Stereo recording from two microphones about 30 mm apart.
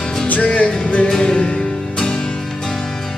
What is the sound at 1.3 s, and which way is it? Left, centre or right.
Music, left.